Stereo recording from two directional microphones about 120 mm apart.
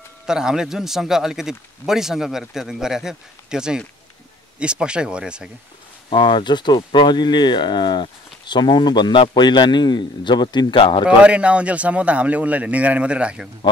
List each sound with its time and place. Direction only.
0.3 s a man's voice: 5° right (ahead or behind)
6.0 s speech: 45° left (ahead or behind)
11.1 s a man's voice: 10° right (ahead or behind)